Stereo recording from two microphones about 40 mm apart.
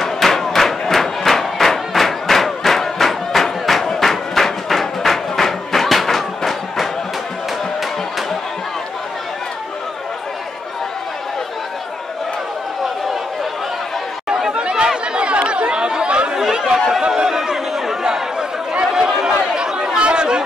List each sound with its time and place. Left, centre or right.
0.0 s music: centre
14.5 s chatter: right
16.3 s chatter: centre
17.1 s a sound: centre
19.3 s chatter: centre